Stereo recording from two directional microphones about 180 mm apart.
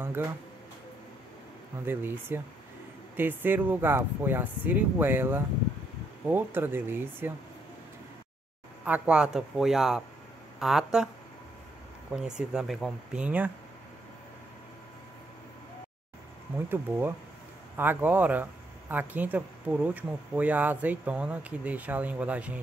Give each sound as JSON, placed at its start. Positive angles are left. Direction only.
{"t": 1.9, "sound": "speech", "side_deg": -10}
{"t": 8.8, "sound": "speech", "side_deg": -10}
{"t": 12.1, "sound": "speech", "side_deg": -5}
{"t": 16.5, "sound": "speech", "side_deg": -10}